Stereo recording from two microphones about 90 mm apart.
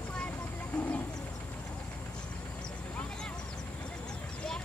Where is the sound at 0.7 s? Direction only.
15° left (ahead or behind).